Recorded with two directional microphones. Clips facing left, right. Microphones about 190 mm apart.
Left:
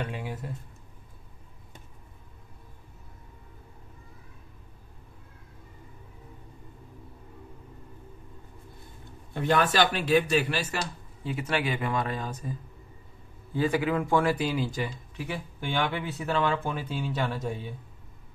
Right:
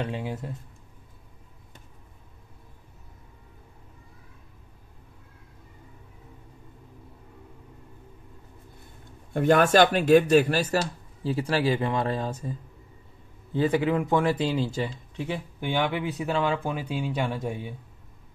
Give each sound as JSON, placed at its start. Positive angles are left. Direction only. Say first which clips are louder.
{"t": 0.0, "sound": "speech", "louder": "right 4 dB", "side_deg": -25}
{"t": 9.3, "sound": "speech", "louder": "right 6 dB", "side_deg": -50}